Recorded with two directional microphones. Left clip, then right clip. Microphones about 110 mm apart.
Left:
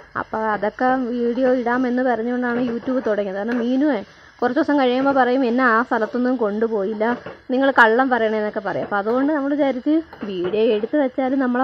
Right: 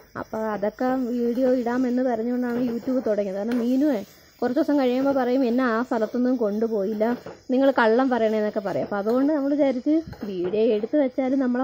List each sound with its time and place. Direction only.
0.4 s speech: 20° right (ahead or behind)